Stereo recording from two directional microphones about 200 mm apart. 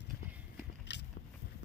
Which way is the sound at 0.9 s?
60° left (ahead or behind).